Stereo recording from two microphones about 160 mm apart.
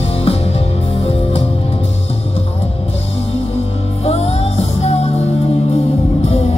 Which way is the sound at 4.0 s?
40° left (ahead or behind).